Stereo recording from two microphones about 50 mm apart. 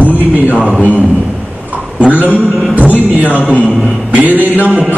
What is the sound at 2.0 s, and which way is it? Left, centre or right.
A man's voice, right.